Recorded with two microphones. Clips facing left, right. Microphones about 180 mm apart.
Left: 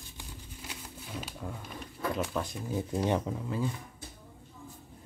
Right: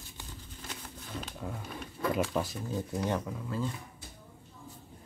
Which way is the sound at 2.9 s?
25° left (ahead or behind).